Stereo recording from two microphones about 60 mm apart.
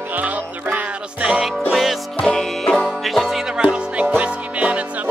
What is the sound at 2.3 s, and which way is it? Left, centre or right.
Music, centre.